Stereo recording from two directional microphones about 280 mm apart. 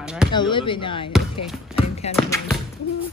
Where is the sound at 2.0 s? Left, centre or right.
Left.